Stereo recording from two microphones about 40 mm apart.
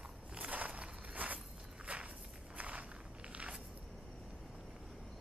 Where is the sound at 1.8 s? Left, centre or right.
Right.